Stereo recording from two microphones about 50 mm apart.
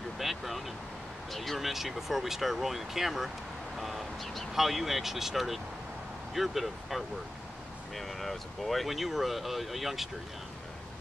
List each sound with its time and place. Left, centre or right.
0.2 s vehicle: centre
1.3 s speech: centre